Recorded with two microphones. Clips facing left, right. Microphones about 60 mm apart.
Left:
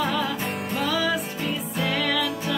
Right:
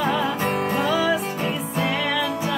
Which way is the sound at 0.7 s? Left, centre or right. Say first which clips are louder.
Right 1 dB; right.